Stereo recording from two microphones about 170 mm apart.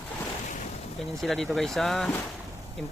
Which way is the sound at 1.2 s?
Centre (ahead or behind).